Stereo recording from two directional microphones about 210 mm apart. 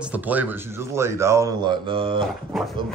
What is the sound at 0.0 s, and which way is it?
A man's voice, 5° right (ahead or behind).